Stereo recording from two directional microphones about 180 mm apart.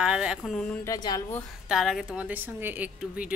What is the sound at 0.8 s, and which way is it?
Speech, 20° left (ahead or behind).